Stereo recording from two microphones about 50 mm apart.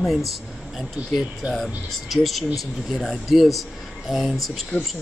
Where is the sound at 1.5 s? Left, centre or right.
Centre.